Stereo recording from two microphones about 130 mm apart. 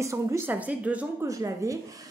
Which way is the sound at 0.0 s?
25° right (ahead or behind).